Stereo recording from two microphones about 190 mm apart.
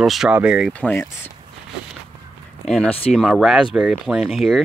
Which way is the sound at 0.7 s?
5° left (ahead or behind).